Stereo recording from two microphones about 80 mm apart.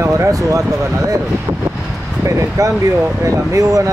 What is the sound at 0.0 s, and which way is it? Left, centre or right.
Speech, right.